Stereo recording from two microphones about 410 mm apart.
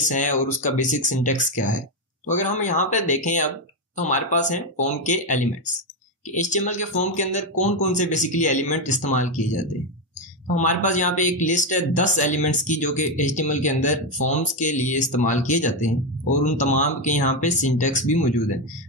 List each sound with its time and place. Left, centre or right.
0.1 s speech: centre
6.5 s speech: centre